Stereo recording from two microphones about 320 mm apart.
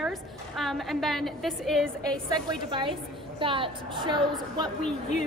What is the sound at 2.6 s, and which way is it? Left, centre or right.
A woman's voice, centre.